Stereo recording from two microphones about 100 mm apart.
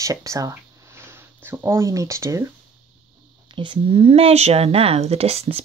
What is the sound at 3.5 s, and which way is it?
Speech, 55° right (ahead or behind).